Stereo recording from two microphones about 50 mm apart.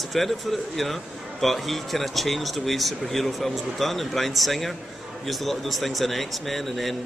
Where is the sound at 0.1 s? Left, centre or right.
Centre.